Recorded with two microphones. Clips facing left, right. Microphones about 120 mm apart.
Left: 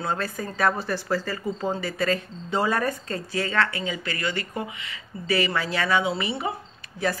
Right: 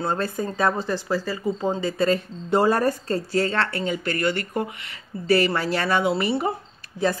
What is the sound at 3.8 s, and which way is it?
Speech, 55° right (ahead or behind).